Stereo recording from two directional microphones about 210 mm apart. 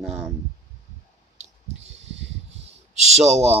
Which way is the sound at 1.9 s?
60° right (ahead or behind).